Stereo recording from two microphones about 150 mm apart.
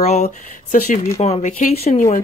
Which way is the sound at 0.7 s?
65° left (ahead or behind).